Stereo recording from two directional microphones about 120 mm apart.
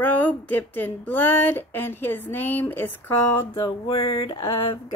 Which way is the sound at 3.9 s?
50° left (ahead or behind).